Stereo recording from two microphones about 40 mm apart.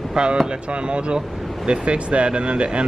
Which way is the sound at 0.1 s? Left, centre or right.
Right.